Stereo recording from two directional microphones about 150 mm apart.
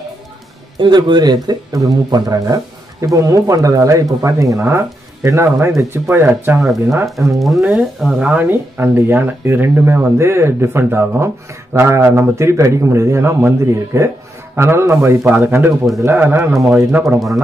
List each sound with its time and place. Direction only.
0.7 s speech: 30° right (ahead or behind); by 6.6 s 15° right (ahead or behind)
7.3 s speech: centre (ahead or behind); by 17.0 s 15° right (ahead or behind)